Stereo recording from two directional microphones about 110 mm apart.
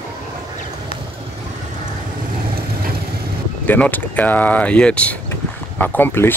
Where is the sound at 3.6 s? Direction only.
15° left (ahead or behind).